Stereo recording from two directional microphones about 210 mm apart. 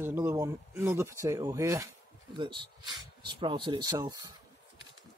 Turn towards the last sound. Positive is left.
turn(degrees=-20)  # may be behind; listen again after turning